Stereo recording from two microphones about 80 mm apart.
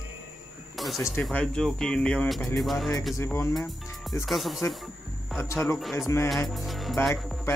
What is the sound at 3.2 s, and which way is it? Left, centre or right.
Speech, left.